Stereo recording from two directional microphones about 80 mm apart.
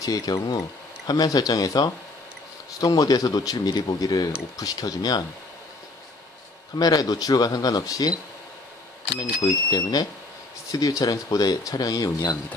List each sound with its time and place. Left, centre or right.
0.0 s speech: left
6.8 s speech: left
9.4 s speech: left